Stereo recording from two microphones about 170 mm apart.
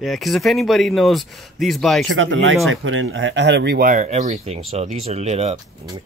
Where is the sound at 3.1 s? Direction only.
90° right.